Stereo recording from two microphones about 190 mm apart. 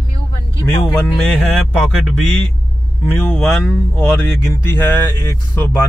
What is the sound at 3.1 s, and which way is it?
Speech, 10° left (ahead or behind).